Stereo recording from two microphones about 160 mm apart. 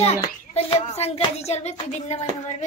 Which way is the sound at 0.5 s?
40° left (ahead or behind).